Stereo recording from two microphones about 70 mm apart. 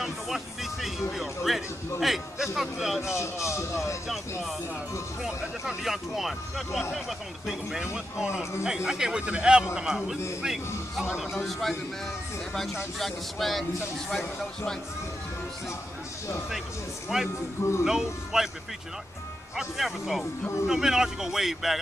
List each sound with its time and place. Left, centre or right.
0.0 s music: centre
1.1 s speech: centre
3.2 s speech: left
4.1 s speech: centre
13.0 s speech: centre
17.1 s speech: centre
19.5 s speech: centre